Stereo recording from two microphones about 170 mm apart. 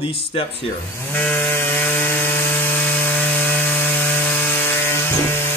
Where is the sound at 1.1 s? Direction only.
10° left (ahead or behind).